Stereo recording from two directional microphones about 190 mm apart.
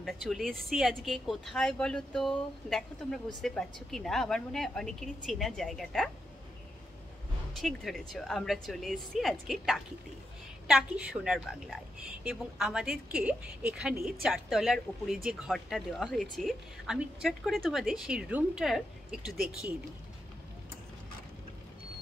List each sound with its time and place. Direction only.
0.0 s speech: centre (ahead or behind)
7.5 s speech: centre (ahead or behind)